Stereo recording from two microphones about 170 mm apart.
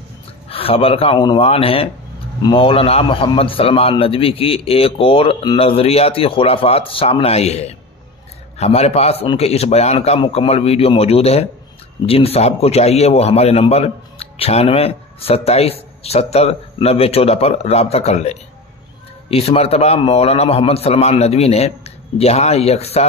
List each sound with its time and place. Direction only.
0.5 s a man's voice: 35° left (ahead or behind)